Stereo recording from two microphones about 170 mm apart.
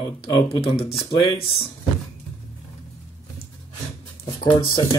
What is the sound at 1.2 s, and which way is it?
Speech, 35° left (ahead or behind).